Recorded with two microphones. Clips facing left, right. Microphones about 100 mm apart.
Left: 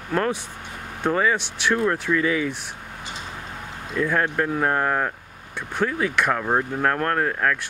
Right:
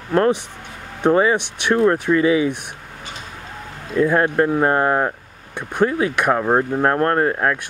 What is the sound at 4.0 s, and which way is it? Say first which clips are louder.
Speech: right 6 dB; 20° right (ahead or behind).